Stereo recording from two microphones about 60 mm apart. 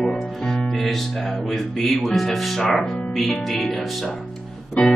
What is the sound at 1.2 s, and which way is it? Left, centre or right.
Speech, centre.